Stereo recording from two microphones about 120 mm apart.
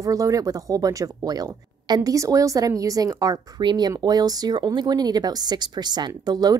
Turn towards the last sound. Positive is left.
turn(degrees=-35)  # may be behind; listen again after turning